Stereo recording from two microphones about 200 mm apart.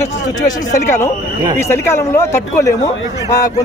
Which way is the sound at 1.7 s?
15° left (ahead or behind).